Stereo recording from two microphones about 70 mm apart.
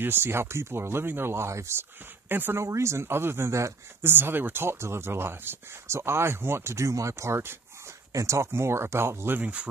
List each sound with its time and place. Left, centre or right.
0.0 s speech: right
2.6 s speech: right
4.1 s speech: right
9.4 s speech: centre